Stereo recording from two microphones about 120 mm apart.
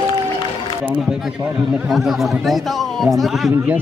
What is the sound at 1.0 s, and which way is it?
Speech, 5° right (ahead or behind).